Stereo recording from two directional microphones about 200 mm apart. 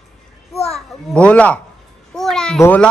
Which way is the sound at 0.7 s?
Centre (ahead or behind).